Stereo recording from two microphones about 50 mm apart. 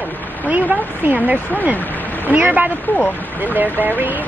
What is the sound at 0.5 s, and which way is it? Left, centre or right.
A woman's voice, right.